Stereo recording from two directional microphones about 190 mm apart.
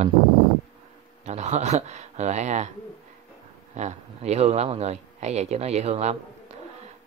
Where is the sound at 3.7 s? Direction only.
35° right (ahead or behind).